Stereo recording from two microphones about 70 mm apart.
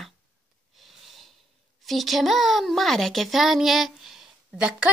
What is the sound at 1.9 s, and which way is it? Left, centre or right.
Speech, centre.